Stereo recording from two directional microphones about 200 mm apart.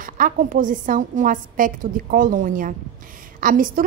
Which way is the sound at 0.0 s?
40° right (ahead or behind).